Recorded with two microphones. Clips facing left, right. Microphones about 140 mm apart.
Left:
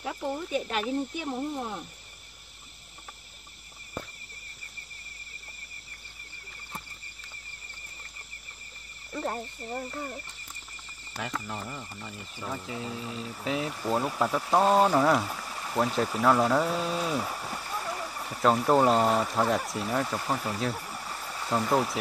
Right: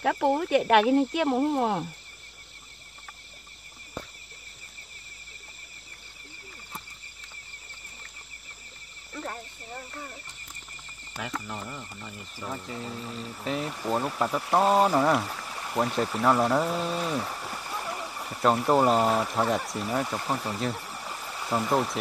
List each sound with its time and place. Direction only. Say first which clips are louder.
0.0 s speech: right 8 dB; 75° right (ahead or behind)
11.1 s speech: even; centre (ahead or behind)
21.2 s a sound: even; centre (ahead or behind)